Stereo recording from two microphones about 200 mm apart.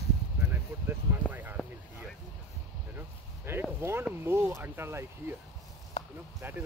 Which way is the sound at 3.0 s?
10° right (ahead or behind).